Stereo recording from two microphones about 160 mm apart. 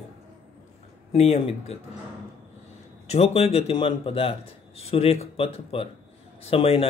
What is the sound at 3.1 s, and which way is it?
Speech, 40° left (ahead or behind).